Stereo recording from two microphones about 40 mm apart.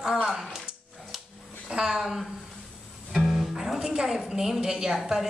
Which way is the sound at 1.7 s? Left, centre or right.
Centre.